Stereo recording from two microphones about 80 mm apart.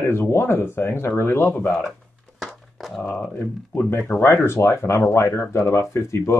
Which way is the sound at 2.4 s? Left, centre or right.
Centre.